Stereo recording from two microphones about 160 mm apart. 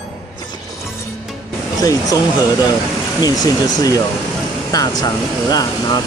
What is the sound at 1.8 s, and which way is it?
Speech, 20° left (ahead or behind).